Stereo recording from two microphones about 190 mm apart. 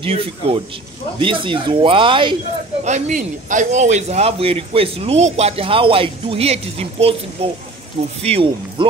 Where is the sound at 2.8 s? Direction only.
40° right (ahead or behind).